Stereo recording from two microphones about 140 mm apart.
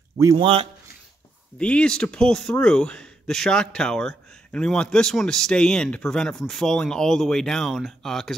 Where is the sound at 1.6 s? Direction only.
5° left (ahead or behind).